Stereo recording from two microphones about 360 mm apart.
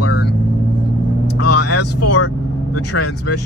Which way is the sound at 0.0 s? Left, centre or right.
Left.